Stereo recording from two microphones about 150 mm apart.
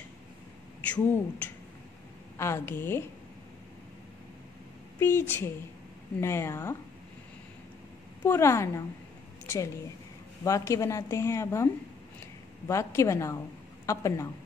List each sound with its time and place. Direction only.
0.8 s a woman's voice: 10° left (ahead or behind)
4.9 s a woman's voice: 15° left (ahead or behind)
8.2 s speech: 15° left (ahead or behind)
10.4 s speech: 20° left (ahead or behind)